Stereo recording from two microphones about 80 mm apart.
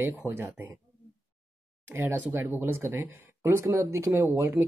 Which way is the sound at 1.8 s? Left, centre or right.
Right.